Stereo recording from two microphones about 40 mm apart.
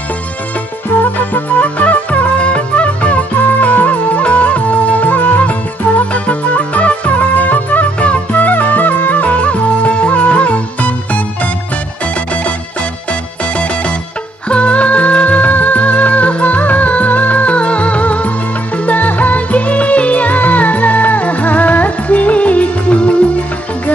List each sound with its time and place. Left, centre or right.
1.3 s music: left
14.5 s music: left